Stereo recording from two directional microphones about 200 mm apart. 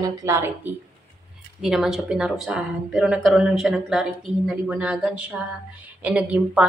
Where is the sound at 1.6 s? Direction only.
Centre (ahead or behind).